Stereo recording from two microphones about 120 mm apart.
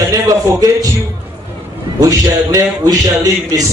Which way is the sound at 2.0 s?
30° right (ahead or behind).